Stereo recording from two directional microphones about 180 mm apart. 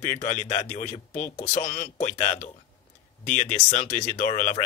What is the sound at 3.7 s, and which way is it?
Speech, 45° left (ahead or behind).